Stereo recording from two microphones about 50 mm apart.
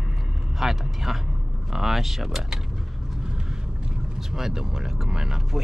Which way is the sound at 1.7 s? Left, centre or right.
Centre.